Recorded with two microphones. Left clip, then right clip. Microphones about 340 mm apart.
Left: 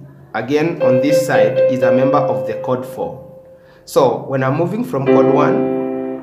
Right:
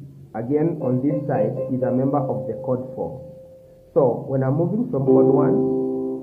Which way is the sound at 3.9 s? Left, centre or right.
Left.